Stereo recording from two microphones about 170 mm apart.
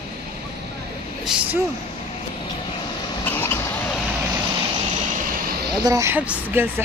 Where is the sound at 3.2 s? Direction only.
10° left (ahead or behind).